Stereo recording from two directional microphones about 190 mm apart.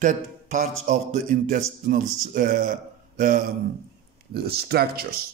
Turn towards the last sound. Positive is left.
turn(degrees=-55)  # may be behind; listen again after turning